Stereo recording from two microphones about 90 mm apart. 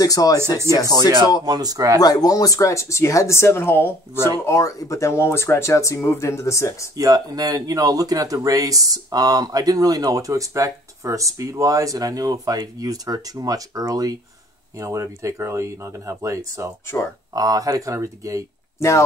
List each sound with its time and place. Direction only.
0.0 s speech: 45° left (ahead or behind)
0.4 s speech: 30° right (ahead or behind)
1.4 s speech: 50° right (ahead or behind)
2.0 s speech: 45° left (ahead or behind); by 3.9 s 25° left (ahead or behind)
4.5 s speech: 35° left (ahead or behind)
7.0 s speech: 40° right (ahead or behind)
18.8 s speech: 30° left (ahead or behind)